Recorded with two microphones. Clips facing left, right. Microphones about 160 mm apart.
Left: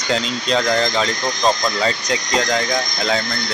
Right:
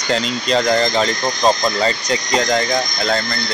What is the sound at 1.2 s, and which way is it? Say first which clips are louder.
Speech: right 2 dB; 15° right (ahead or behind).